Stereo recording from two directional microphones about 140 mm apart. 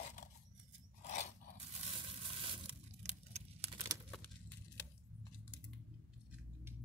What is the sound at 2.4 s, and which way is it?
Tearing, 40° right (ahead or behind).